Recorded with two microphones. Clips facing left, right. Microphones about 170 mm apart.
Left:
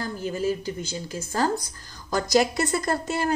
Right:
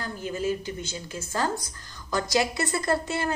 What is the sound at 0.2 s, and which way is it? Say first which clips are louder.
A woman's voice: left 1 dB; 35° left (ahead or behind).